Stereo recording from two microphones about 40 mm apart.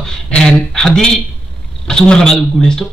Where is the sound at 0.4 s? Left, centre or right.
Centre.